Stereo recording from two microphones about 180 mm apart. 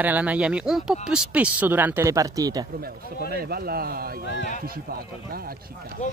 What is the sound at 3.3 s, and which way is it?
Speech, 60° right (ahead or behind).